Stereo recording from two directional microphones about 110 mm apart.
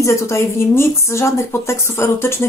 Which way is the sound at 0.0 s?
25° left (ahead or behind).